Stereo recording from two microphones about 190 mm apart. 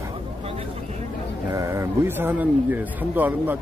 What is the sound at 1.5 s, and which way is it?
Speech, 15° right (ahead or behind).